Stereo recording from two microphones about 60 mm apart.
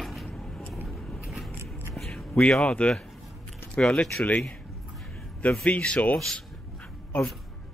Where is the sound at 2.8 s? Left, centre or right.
Left.